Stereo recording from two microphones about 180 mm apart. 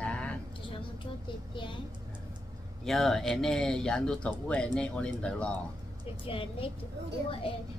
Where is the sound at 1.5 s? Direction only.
25° left (ahead or behind).